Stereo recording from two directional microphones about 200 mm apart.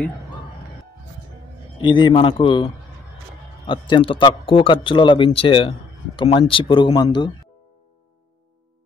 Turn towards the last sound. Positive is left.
turn(degrees=25)  # may be behind; listen again after turning